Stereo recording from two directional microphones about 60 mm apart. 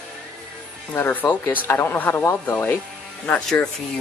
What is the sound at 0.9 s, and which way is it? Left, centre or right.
Speech, left.